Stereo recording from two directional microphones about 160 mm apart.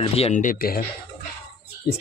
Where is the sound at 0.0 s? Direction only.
40° left (ahead or behind).